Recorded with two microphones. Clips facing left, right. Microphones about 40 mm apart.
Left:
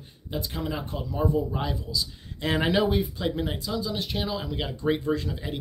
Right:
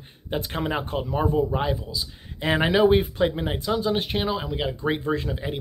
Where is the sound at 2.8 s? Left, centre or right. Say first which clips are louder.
Right 7 dB; right.